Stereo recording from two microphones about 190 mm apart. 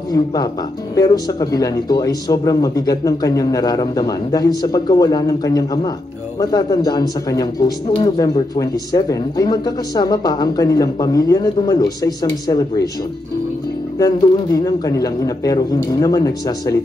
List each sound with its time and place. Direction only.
0.1 s speech: 20° left (ahead or behind)
13.9 s speech: 20° left (ahead or behind)